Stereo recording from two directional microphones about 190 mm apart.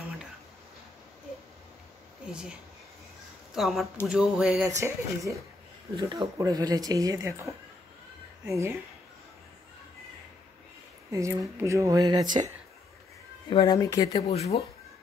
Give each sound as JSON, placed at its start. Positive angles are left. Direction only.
{"t": 3.5, "sound": "a sound", "side_deg": 0}
{"t": 4.6, "sound": "speech", "side_deg": -15}
{"t": 11.1, "sound": "speech", "side_deg": -15}
{"t": 13.5, "sound": "speech", "side_deg": 25}
{"t": 14.1, "sound": "speech", "side_deg": 35}